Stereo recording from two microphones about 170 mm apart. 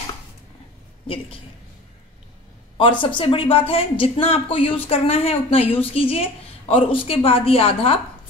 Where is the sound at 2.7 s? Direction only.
30° left (ahead or behind).